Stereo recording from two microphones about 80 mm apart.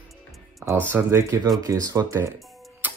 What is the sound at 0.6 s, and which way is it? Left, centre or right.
Speech, right.